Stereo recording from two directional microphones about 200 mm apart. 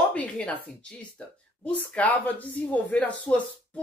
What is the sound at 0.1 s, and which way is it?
Speech, 5° left (ahead or behind).